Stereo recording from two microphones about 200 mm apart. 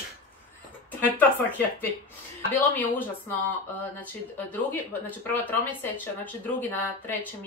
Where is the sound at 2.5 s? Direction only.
10° left (ahead or behind).